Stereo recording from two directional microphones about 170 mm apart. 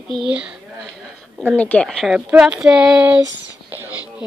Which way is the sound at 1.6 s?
5° left (ahead or behind).